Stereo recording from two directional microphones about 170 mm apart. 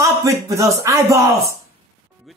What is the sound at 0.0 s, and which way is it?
Speech, 15° right (ahead or behind).